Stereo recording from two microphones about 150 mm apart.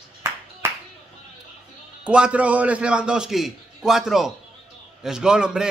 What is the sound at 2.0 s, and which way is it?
A man's voice, 5° right (ahead or behind).